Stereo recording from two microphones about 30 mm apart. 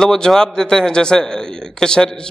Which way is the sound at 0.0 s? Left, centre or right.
Centre.